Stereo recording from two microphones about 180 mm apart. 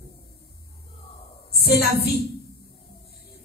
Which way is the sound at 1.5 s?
60° left (ahead or behind).